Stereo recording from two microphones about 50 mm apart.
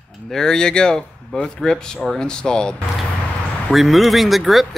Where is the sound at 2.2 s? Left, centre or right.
Centre.